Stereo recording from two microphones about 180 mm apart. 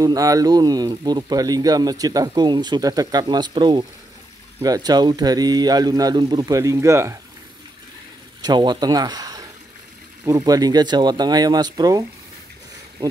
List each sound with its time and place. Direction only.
0.0 s speech: 20° right (ahead or behind)
8.4 s speech: 25° right (ahead or behind)